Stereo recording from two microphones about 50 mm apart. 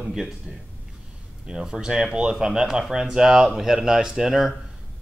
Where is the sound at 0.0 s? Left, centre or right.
Centre.